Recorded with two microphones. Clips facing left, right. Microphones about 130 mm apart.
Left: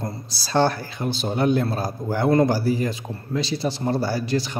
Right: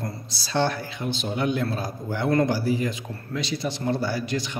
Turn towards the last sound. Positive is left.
turn(degrees=35)  # may be behind; listen again after turning